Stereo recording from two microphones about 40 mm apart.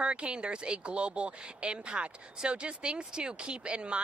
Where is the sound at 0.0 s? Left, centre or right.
Right.